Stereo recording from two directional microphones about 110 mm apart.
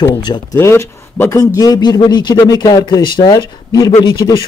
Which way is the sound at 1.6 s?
40° left (ahead or behind).